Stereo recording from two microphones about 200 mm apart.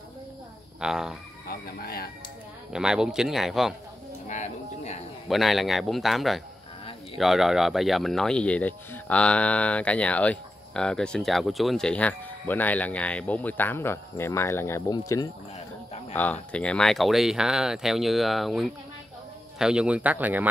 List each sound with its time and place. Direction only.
0.7 s speech: 5° right (ahead or behind)
1.5 s speech: 50° left (ahead or behind)
2.7 s speech: 5° right (ahead or behind)
4.3 s speech: 35° left (ahead or behind)
5.3 s speech: centre (ahead or behind)